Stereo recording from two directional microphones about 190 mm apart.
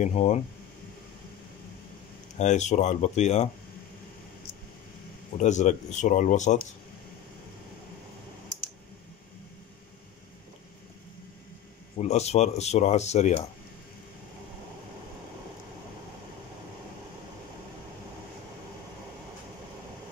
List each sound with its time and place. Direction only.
0.0 s speech: 35° left (ahead or behind)
2.3 s speech: 40° left (ahead or behind)
5.4 s speech: 40° left (ahead or behind)
12.0 s speech: 35° left (ahead or behind)